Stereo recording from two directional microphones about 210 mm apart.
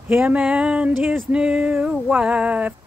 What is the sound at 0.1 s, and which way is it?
Speech, 5° right (ahead or behind).